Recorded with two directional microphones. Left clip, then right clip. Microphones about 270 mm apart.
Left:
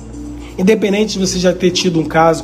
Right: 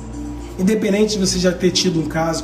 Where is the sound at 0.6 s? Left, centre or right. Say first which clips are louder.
Left 4 dB; centre.